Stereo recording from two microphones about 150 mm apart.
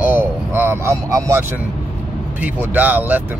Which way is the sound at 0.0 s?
15° right (ahead or behind).